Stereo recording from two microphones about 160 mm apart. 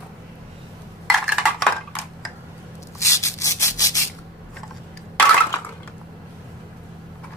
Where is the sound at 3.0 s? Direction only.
20° left (ahead or behind).